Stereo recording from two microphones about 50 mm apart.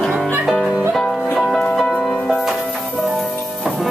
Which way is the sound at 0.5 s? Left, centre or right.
Centre.